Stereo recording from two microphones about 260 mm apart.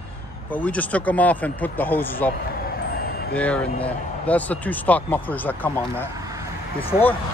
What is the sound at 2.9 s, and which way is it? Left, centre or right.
Vehicle, left.